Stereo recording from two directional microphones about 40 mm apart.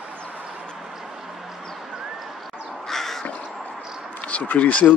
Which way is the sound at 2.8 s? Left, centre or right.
Centre.